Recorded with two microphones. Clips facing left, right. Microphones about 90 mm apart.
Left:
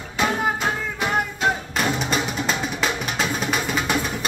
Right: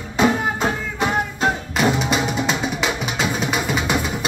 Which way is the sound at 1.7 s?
5° right (ahead or behind).